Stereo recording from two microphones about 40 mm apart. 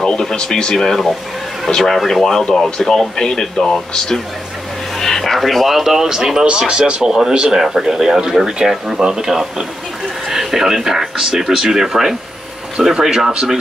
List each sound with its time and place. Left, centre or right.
0.0 s speech: centre
5.8 s speech: centre